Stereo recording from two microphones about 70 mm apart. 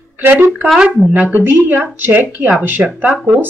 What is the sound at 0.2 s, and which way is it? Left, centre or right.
Speech, right.